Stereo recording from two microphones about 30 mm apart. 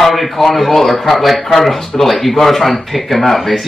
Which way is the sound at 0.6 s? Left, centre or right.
Centre.